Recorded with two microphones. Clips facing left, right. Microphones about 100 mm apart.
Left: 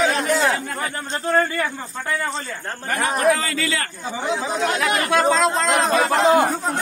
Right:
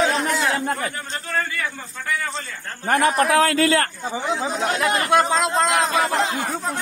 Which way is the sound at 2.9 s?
60° right (ahead or behind).